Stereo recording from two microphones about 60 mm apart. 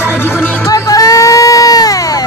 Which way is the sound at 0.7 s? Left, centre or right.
Left.